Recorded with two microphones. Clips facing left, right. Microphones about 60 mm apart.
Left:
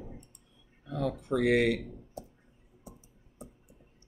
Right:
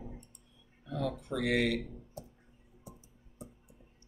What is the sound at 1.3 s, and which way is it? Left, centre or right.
Speech, left.